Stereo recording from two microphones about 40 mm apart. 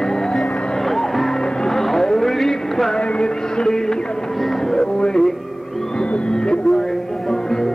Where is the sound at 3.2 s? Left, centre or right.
Centre.